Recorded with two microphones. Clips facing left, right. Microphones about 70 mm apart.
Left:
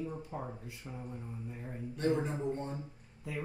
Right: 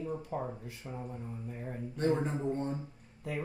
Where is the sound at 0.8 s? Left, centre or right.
Right.